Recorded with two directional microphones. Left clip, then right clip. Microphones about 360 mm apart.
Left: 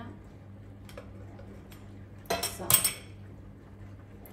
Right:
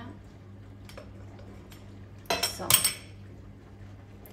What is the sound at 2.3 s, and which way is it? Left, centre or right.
Cutlery, centre.